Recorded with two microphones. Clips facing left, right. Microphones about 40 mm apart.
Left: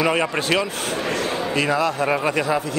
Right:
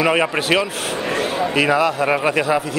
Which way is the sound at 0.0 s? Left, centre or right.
Centre.